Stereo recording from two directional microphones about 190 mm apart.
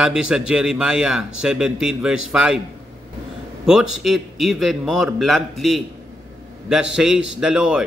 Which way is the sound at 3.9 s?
Centre (ahead or behind).